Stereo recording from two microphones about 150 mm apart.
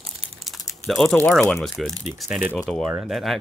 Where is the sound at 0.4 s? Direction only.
Centre (ahead or behind).